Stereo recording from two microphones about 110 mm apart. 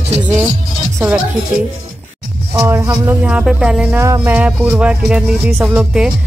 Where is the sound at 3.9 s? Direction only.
25° right (ahead or behind).